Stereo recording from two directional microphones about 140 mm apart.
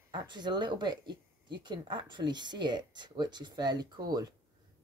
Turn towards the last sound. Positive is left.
turn(degrees=-30)  # may be behind; listen again after turning